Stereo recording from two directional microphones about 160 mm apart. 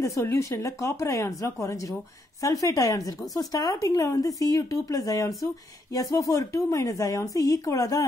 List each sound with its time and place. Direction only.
0.0 s speech: 15° left (ahead or behind)